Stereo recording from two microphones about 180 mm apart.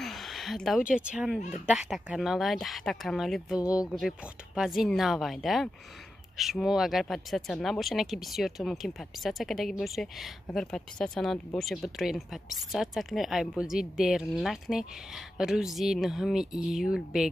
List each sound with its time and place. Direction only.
0.0 s speech: centre (ahead or behind)
3.6 s speech: 20° left (ahead or behind)
4.6 s speech: centre (ahead or behind)